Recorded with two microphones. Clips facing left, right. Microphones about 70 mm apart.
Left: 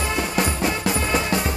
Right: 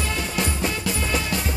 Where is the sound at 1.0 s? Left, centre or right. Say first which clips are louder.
Left 3 dB; left.